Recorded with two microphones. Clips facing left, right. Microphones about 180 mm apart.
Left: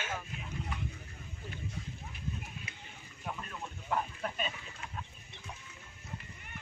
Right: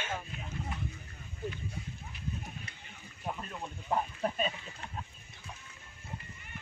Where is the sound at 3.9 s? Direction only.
30° right (ahead or behind).